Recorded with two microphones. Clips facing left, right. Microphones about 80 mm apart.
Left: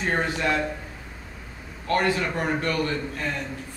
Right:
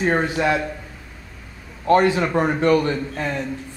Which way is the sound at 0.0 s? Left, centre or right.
Centre.